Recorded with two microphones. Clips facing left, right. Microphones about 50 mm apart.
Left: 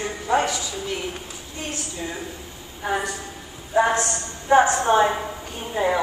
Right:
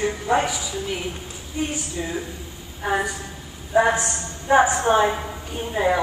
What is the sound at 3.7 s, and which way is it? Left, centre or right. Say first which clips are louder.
A woman's voice: right 1 dB; centre.